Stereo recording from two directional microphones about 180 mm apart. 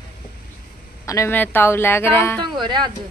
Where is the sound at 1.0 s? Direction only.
15° left (ahead or behind).